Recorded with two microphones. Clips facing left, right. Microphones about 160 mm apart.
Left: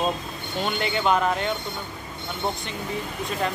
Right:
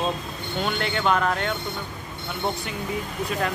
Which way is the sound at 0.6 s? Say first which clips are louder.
Even; centre (ahead or behind).